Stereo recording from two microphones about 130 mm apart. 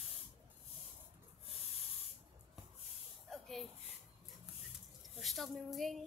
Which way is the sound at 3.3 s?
Centre (ahead or behind).